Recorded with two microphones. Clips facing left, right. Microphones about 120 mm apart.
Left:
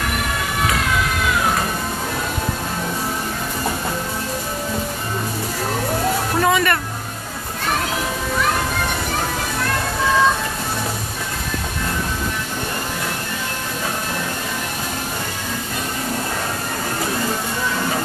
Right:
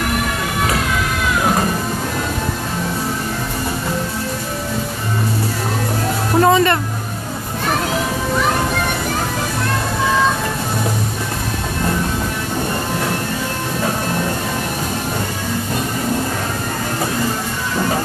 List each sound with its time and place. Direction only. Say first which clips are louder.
6.4 s music: right 5 dB; 30° right (ahead or behind)